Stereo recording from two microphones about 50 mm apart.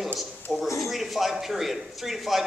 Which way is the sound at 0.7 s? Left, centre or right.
Centre.